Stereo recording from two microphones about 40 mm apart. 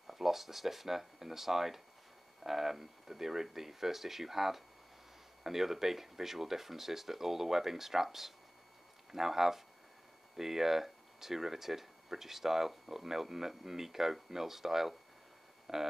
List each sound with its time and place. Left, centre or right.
0.0 s speech: centre